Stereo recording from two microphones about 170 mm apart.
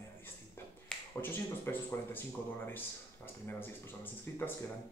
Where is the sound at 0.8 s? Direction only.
10° left (ahead or behind).